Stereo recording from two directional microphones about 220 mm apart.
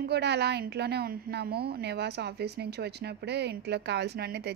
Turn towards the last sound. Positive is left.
turn(degrees=-45)  # may be behind; listen again after turning